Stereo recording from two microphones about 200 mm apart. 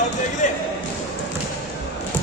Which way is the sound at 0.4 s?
35° left (ahead or behind).